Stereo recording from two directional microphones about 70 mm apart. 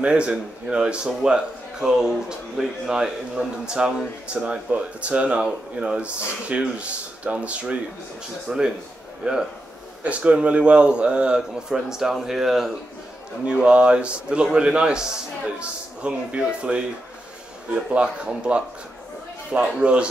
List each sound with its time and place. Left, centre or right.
0.0 s speech: centre
17.9 s speech: centre